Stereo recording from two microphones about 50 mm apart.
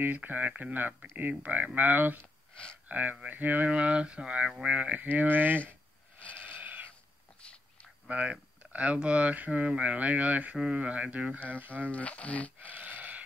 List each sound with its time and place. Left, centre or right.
0.0 s speech: right
2.5 s speech: left
2.9 s speech: right; by 4.6 s centre
4.6 s speech: right
5.0 s speech: right
6.1 s goat: left
6.4 s sheep: right
8.1 s speech: right
11.6 s speech: right
11.9 s speech: left
12.7 s a sound: right